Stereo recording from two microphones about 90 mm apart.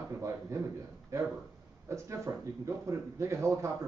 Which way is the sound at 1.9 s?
35° right (ahead or behind).